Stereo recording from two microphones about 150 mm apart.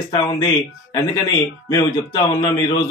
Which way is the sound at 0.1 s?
30° left (ahead or behind).